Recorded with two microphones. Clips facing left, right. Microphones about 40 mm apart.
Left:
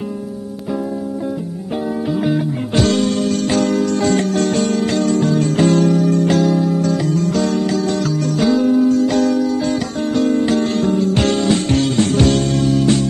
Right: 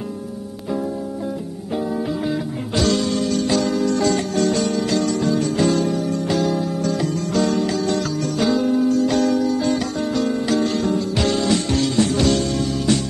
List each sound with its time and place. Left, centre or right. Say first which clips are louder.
2.9 s music: left 3 dB; left
3.7 s music: left 3 dB; centre
4.0 s music: left 3 dB; left
6.4 s music: left 5 dB; centre
10.4 s music: left 3 dB; left